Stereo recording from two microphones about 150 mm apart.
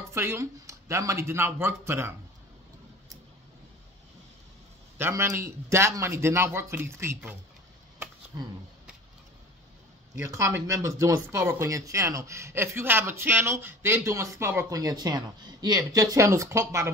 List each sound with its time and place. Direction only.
0.1 s a man's voice: 15° right (ahead or behind)
4.9 s a man's voice: 15° right (ahead or behind)
10.1 s speech: 20° right (ahead or behind)